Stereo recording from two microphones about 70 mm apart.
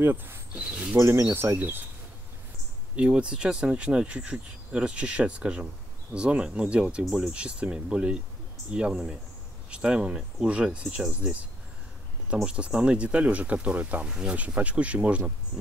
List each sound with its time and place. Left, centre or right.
0.0 s speech: right
0.6 s speech: centre
0.9 s speech: right
1.3 s speech: right
3.0 s speech: centre
12.4 s speech: centre